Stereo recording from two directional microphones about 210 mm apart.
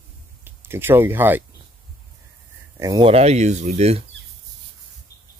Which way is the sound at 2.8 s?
15° right (ahead or behind).